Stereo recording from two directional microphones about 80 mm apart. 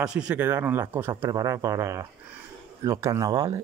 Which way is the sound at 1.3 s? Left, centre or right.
Right.